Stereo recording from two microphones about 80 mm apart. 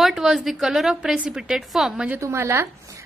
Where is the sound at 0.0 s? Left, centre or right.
Centre.